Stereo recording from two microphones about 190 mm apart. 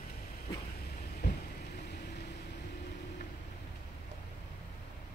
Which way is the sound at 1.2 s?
60° left (ahead or behind).